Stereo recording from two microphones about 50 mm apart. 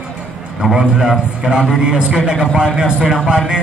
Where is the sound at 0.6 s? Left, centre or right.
Centre.